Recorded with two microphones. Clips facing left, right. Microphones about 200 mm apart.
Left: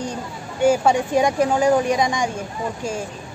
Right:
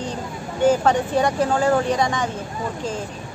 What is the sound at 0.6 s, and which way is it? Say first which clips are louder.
A woman's voice: left 1 dB; 10° left (ahead or behind).